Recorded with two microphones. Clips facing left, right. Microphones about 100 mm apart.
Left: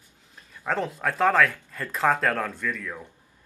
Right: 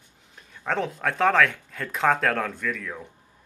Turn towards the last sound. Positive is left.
turn(degrees=0)  # may be behind; listen again after turning